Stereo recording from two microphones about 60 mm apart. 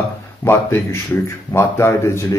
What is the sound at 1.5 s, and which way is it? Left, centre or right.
Speech, left.